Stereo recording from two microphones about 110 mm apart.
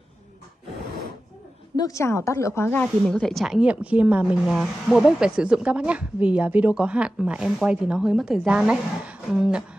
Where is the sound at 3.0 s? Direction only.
5° left (ahead or behind).